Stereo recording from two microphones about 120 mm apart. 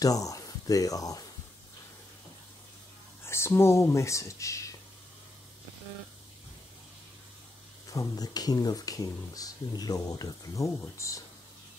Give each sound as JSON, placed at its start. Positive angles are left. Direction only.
{"t": 0.0, "sound": "speech", "side_deg": 30}
{"t": 3.3, "sound": "speech", "side_deg": 20}
{"t": 7.9, "sound": "speech", "side_deg": 30}